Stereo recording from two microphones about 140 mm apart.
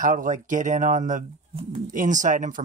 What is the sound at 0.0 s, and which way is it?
Speech, 70° right (ahead or behind).